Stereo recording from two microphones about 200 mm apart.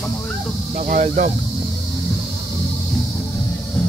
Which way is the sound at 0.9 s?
40° right (ahead or behind).